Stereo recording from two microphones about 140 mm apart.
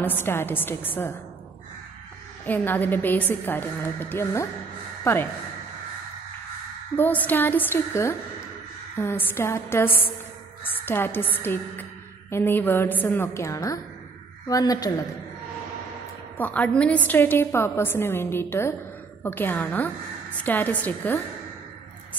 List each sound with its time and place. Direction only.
0.0 s a woman's voice: 15° left (ahead or behind)
2.4 s a woman's voice: 15° left (ahead or behind)
7.0 s a woman's voice: 10° left (ahead or behind)
16.3 s a woman's voice: 10° left (ahead or behind)